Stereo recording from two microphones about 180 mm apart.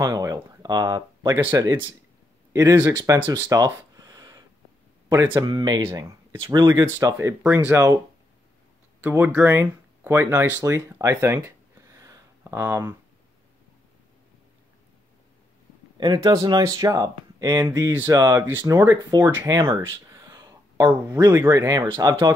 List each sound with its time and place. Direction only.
0.0 s speech: 20° right (ahead or behind)
1.7 s speech: 25° right (ahead or behind)
2.5 s speech: 10° right (ahead or behind)
9.0 s speech: 10° right (ahead or behind)
16.0 s speech: 25° right (ahead or behind)